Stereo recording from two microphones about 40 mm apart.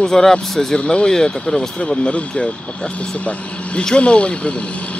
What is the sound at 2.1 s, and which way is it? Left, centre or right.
Speech, left.